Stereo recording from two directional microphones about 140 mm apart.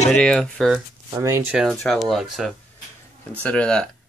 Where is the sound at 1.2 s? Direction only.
20° right (ahead or behind).